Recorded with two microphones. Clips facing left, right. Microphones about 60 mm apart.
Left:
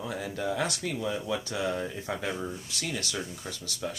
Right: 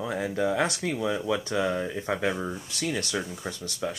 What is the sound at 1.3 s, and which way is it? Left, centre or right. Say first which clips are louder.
Speech: right 4 dB; right.